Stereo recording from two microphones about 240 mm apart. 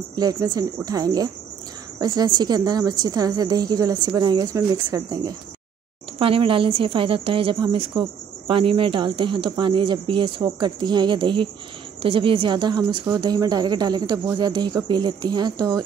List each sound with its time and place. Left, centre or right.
0.1 s speech: centre